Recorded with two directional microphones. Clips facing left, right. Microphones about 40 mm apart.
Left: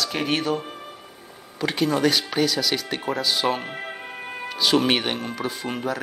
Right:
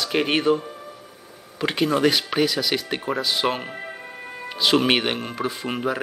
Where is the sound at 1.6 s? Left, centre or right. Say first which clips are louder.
Right 1 dB; centre.